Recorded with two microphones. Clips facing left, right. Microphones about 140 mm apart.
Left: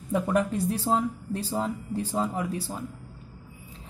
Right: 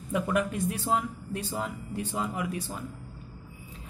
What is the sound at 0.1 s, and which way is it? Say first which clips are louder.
A woman's voice: left 3 dB; 35° left (ahead or behind).